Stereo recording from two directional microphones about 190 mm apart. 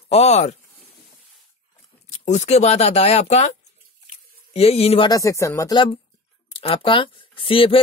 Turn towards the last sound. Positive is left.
turn(degrees=30)  # may be behind; listen again after turning